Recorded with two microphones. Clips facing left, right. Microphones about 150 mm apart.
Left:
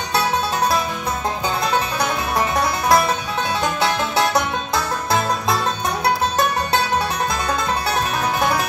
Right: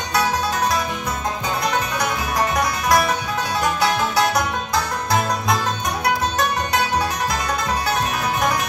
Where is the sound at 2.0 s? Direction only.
30° left (ahead or behind).